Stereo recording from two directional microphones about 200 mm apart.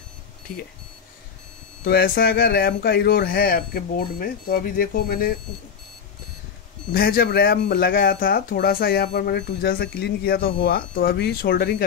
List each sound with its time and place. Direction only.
1.9 s speech: 50° left (ahead or behind)
6.9 s speech: 50° left (ahead or behind)